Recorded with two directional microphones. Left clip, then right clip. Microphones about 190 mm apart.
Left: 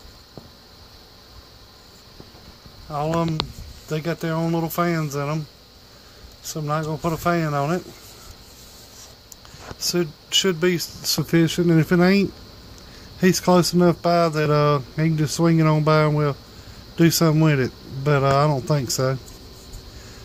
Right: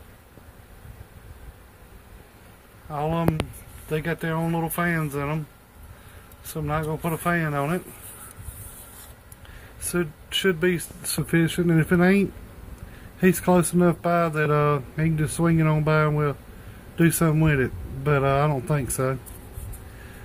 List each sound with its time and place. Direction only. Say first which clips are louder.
2.9 s speech: left 2 dB; 25° left (ahead or behind)
6.5 s speech: left 2 dB; 25° left (ahead or behind)
9.8 s speech: left 4 dB; 35° left (ahead or behind)